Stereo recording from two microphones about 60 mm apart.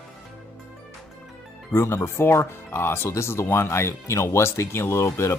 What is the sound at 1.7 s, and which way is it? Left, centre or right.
Speech, left.